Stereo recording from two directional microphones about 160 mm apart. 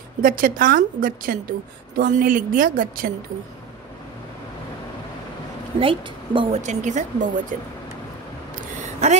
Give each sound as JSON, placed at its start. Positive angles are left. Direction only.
{"t": 0.2, "sound": "a woman's voice", "side_deg": -60}
{"t": 5.8, "sound": "a woman's voice", "side_deg": -35}
{"t": 6.6, "sound": "a woman's voice", "side_deg": -50}
{"t": 8.8, "sound": "a sound", "side_deg": -45}